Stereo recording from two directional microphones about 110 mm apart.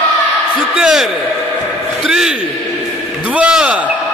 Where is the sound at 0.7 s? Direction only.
5° right (ahead or behind).